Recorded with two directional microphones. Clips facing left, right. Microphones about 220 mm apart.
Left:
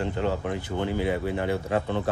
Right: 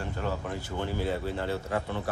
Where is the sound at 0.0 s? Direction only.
20° left (ahead or behind).